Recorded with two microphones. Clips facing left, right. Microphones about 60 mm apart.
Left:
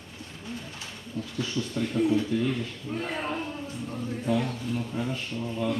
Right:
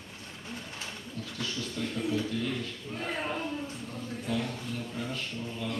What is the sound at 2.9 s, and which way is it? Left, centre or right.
Speech, centre.